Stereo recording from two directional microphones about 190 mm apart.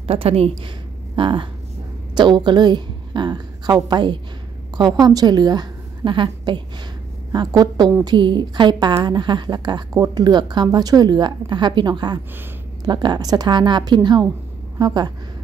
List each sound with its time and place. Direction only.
0.0 s a woman's voice: 30° right (ahead or behind)